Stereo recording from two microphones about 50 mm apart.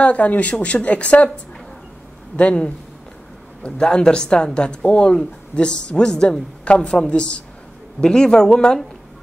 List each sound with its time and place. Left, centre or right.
0.0 s a man's voice: left